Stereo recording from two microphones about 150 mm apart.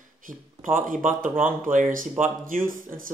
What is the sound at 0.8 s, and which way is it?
Speech, 60° right (ahead or behind).